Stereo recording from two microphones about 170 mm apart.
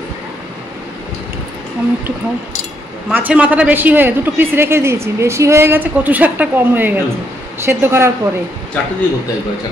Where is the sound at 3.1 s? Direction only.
10° right (ahead or behind).